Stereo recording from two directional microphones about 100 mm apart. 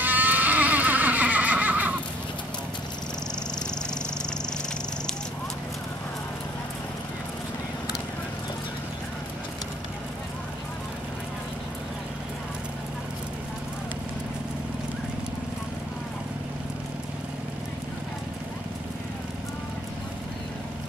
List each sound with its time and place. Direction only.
0.0 s neigh: 20° right (ahead or behind)